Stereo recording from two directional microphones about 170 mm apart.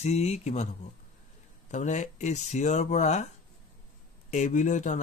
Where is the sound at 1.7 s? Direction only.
45° left (ahead or behind).